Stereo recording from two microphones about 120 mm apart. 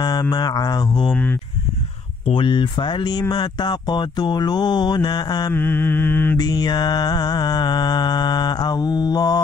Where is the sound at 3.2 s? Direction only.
35° left (ahead or behind).